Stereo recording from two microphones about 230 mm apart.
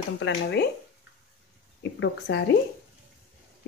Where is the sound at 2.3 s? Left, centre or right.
Left.